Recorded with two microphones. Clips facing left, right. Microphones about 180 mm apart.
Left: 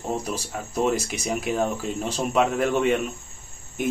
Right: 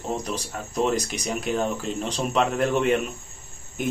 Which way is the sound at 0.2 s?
10° left (ahead or behind).